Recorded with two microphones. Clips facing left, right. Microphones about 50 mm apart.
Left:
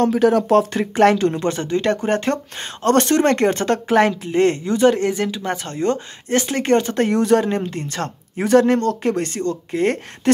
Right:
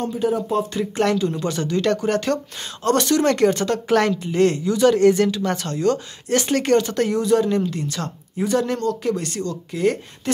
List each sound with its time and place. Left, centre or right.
0.0 s speech: left
0.9 s speech: left
1.3 s speech: left
7.2 s speech: left
7.4 s speech: left